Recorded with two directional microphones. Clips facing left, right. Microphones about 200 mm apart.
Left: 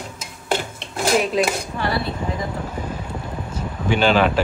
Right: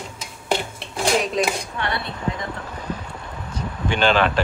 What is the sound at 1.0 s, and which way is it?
Speech, 5° left (ahead or behind).